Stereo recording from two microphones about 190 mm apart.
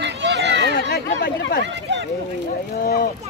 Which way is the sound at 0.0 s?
65° right (ahead or behind).